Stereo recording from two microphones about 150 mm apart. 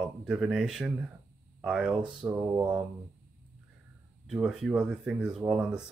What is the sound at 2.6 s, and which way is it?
Speech, 10° right (ahead or behind).